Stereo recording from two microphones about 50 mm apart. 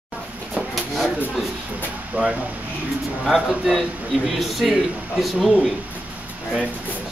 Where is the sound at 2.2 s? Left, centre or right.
Right.